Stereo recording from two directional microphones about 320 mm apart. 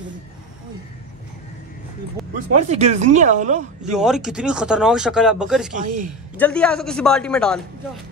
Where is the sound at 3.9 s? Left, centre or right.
Centre.